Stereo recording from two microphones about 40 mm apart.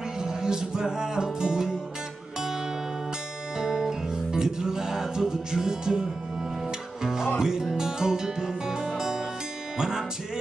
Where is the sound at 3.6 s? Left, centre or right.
Centre.